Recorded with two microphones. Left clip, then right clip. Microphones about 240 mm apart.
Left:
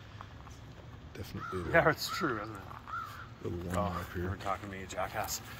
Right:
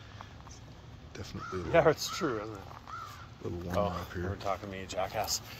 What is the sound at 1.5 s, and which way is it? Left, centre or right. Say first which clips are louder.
Speech: right 2 dB; right.